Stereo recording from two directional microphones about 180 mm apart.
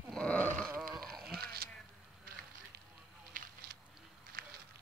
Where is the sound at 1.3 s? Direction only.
60° right (ahead or behind).